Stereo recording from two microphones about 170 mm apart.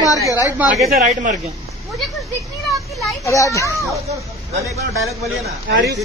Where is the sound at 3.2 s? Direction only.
20° left (ahead or behind).